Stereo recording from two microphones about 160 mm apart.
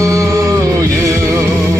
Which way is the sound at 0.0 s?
20° right (ahead or behind).